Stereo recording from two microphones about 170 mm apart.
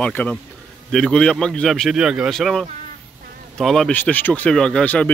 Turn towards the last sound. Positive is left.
turn(degrees=5)  # may be behind; listen again after turning